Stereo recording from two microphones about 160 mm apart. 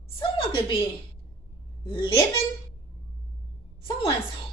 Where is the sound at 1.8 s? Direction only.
35° left (ahead or behind).